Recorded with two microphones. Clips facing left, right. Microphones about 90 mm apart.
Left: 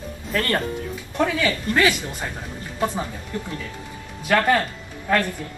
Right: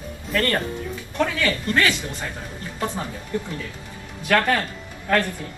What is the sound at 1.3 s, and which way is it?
Speech, 15° left (ahead or behind).